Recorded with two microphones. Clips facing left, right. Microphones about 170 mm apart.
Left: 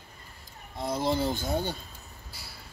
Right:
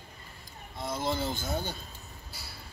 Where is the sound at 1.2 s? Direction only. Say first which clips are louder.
Left 4 dB; 15° left (ahead or behind).